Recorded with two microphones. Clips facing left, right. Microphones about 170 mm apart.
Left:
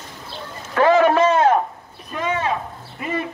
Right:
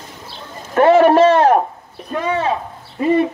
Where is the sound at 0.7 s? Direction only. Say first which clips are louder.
Right 5 dB; 30° right (ahead or behind).